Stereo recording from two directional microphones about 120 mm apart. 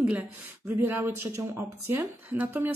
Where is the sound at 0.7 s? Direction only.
20° right (ahead or behind).